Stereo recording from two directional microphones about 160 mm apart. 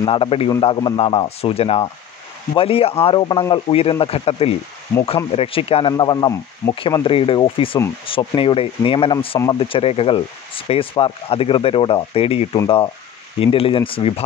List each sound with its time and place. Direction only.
0.0 s speech: 35° left (ahead or behind)